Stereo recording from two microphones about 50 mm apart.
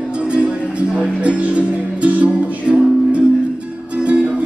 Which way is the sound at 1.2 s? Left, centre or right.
Right.